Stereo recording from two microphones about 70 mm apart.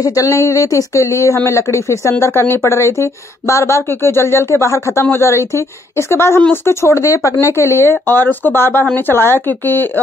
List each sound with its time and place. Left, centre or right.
0.0 s speech: left